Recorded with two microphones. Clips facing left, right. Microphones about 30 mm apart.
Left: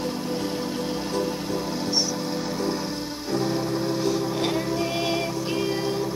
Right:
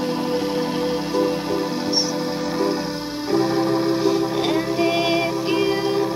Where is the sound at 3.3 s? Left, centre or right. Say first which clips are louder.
Right 7 dB; right.